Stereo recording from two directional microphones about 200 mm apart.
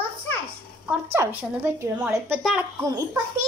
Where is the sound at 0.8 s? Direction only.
10° right (ahead or behind).